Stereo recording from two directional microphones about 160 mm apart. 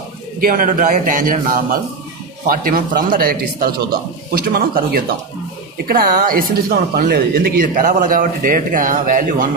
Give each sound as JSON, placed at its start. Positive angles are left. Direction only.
{"t": 0.4, "sound": "a woman's voice", "side_deg": -60}